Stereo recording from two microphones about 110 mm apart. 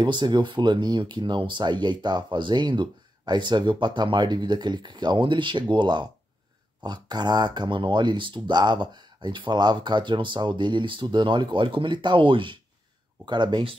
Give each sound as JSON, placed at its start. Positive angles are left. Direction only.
{"t": 0.0, "sound": "speech", "side_deg": -45}